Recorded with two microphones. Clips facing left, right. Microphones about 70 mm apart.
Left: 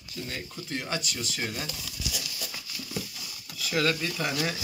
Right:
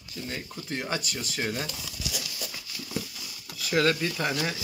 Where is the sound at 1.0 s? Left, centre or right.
Right.